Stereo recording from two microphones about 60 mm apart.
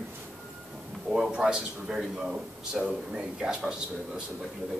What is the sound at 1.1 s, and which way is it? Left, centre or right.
A man's voice, centre.